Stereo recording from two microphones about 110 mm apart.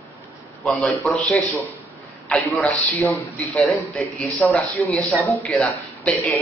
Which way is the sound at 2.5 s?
10° left (ahead or behind).